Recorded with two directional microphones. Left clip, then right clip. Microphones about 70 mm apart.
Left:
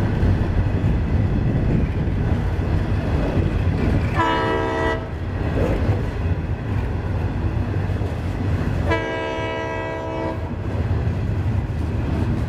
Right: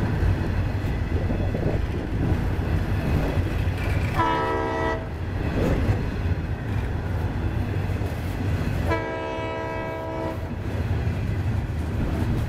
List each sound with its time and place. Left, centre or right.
4.2 s train: centre
8.8 s train horn: centre